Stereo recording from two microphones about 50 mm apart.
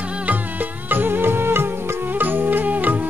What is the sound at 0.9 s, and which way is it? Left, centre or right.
Music, right.